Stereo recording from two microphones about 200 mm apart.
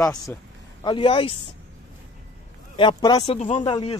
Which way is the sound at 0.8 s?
25° left (ahead or behind).